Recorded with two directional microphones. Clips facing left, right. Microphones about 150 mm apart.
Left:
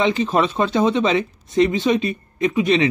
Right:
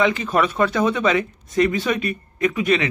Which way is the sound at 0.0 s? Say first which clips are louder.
Left 1 dB; 25° left (ahead or behind).